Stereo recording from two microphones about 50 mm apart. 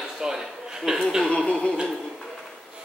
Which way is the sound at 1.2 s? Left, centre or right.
Centre.